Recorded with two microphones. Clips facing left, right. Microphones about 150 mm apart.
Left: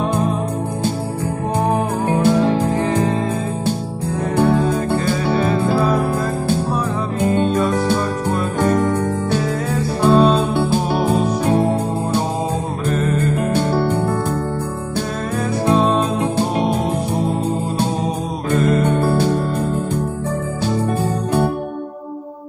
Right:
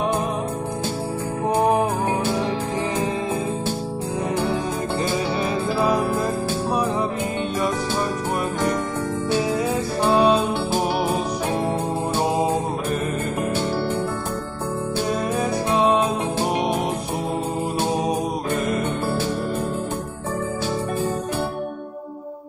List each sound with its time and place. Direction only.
2.0 s music: 50° left (ahead or behind)
5.3 s music: 50° left (ahead or behind)
8.5 s music: 50° left (ahead or behind)
10.0 s music: 15° right (ahead or behind)
13.6 s music: 50° left (ahead or behind)
19.0 s music: 50° left (ahead or behind)
20.6 s music: 50° left (ahead or behind)